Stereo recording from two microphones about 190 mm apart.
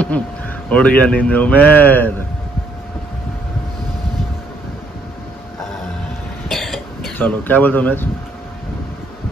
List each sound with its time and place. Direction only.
0.7 s speech: 5° left (ahead or behind)
6.5 s cough: centre (ahead or behind)
7.2 s speech: 10° left (ahead or behind)